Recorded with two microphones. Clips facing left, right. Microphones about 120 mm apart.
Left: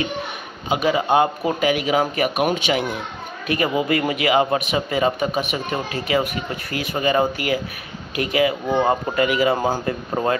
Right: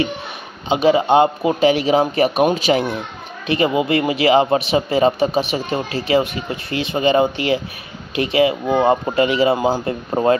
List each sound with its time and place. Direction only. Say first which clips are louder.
0.7 s speech: right 5 dB; 25° right (ahead or behind)
3.4 s speech: right 3 dB; 25° right (ahead or behind)